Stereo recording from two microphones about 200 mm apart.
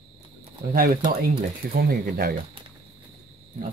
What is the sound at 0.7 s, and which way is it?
Speech, 45° right (ahead or behind).